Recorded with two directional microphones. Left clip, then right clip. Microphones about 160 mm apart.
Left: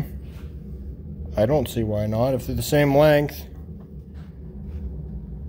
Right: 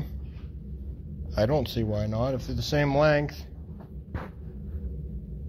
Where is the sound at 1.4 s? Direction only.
25° left (ahead or behind).